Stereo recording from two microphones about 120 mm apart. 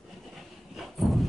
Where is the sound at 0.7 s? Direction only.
Centre (ahead or behind).